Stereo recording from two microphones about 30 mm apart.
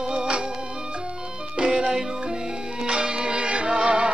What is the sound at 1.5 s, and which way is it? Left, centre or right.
Music, right.